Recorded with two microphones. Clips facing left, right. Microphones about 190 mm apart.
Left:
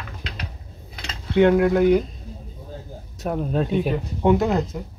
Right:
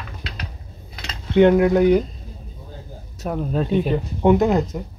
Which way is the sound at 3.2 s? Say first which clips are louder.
Even; centre (ahead or behind).